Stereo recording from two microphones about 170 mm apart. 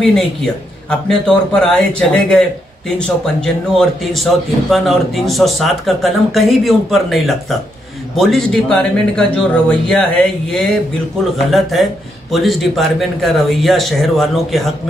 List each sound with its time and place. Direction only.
0.0 s speech: 5° left (ahead or behind)